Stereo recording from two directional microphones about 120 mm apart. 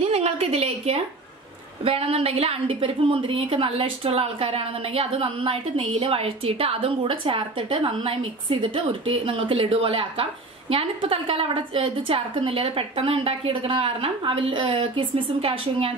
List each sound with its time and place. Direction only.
0.1 s a woman's voice: 60° right (ahead or behind)